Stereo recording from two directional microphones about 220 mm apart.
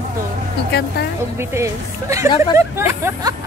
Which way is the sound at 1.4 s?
10° right (ahead or behind).